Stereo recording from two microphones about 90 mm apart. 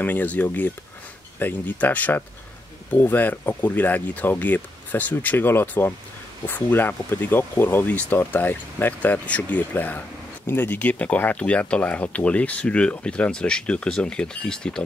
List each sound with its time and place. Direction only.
0.0 s speech: 20° left (ahead or behind)